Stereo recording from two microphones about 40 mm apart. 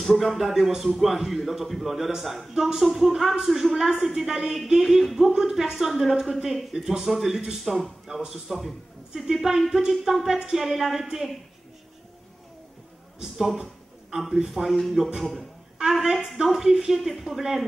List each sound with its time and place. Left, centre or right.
0.0 s a man's voice: centre
7.6 s speech: centre
8.1 s a man's voice: centre
14.1 s a man's voice: centre